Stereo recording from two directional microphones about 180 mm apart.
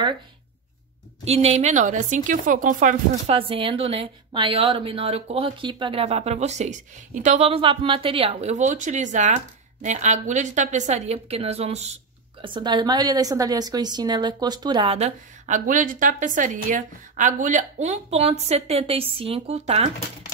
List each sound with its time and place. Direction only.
1.2 s speech: 35° right (ahead or behind)
3.3 s a woman's voice: 30° right (ahead or behind)
12.4 s a woman's voice: 25° right (ahead or behind)
15.0 s a woman's voice: 40° right (ahead or behind)